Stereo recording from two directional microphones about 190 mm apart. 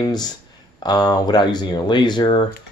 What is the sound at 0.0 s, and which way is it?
Speech, 20° left (ahead or behind).